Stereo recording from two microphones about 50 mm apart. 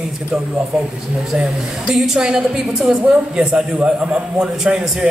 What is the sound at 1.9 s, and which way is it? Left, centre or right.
A man's voice, centre.